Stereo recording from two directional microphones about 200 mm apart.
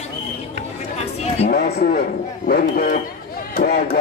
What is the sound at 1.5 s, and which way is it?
Speech, 55° left (ahead or behind).